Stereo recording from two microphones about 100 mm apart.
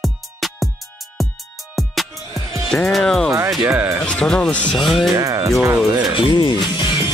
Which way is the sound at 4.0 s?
5° left (ahead or behind).